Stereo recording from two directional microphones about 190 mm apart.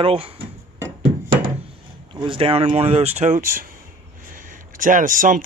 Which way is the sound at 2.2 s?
25° right (ahead or behind).